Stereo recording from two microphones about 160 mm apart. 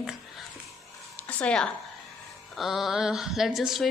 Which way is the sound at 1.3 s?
5° left (ahead or behind).